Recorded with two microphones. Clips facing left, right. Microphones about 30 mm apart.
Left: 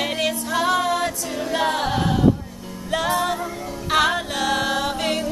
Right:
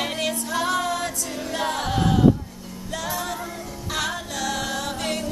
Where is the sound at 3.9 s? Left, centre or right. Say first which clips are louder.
Left 8 dB; left.